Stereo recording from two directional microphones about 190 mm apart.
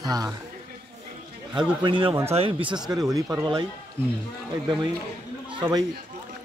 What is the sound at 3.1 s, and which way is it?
Speech, 20° right (ahead or behind).